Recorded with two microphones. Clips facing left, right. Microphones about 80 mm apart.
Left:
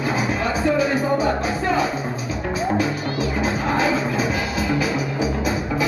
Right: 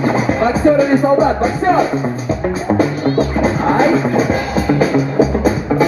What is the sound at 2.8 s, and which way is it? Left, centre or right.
Music, right.